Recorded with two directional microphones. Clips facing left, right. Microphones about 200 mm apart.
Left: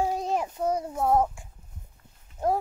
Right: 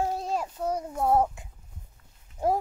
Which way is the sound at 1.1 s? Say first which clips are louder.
Even; 25° right (ahead or behind).